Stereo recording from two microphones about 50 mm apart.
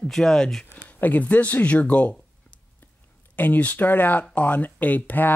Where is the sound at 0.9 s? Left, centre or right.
Left.